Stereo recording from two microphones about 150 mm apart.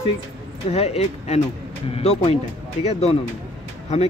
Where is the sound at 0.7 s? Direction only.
45° left (ahead or behind).